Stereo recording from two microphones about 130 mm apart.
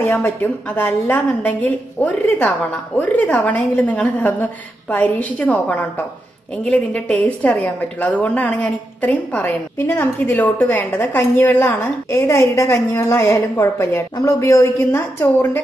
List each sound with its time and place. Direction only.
0.0 s a woman's voice: 15° left (ahead or behind)